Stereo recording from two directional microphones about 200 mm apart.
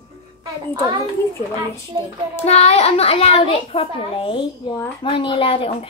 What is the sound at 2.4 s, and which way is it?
A child's voice, 30° left (ahead or behind).